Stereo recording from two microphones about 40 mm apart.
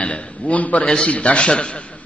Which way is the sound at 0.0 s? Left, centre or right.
Left.